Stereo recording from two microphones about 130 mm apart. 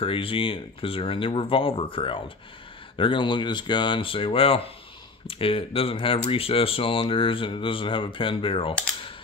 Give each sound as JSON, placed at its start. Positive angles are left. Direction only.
{"t": 0.0, "sound": "speech", "side_deg": 45}